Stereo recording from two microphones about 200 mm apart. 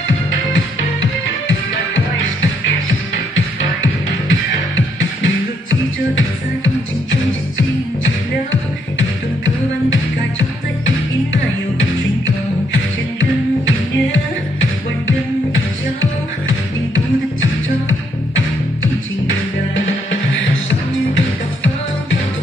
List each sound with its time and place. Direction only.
3.3 s music: 70° left (ahead or behind)
13.2 s music: 70° left (ahead or behind)
16.9 s music: 75° left (ahead or behind)